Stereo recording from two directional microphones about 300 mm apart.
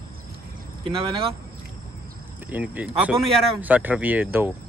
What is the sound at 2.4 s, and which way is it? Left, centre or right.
Speech, centre.